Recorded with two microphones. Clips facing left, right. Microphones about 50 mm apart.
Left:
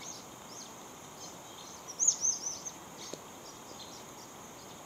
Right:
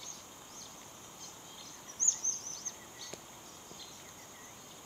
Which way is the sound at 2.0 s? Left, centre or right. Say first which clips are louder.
Left 2 dB; centre.